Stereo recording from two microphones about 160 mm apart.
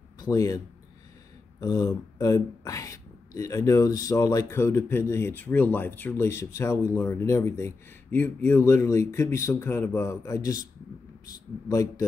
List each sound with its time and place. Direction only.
0.2 s speech: 20° left (ahead or behind)
1.6 s speech: 25° left (ahead or behind)
11.7 s a man's voice: 20° left (ahead or behind)